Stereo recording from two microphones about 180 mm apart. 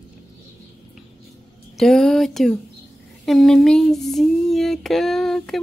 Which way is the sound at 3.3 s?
Centre (ahead or behind).